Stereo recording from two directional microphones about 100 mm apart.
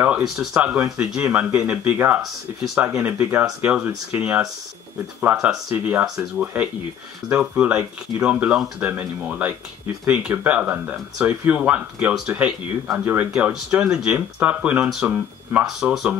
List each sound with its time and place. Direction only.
0.2 s speech: 5° right (ahead or behind)
6.0 s speech: 5° right (ahead or behind)
7.2 s speech: 15° right (ahead or behind)
15.6 s speech: 5° right (ahead or behind)